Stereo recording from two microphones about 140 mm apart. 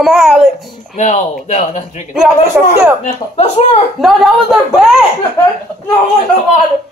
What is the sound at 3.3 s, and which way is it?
Speech, 50° left (ahead or behind).